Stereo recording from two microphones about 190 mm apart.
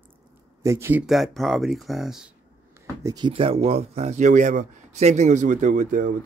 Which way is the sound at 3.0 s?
20° right (ahead or behind).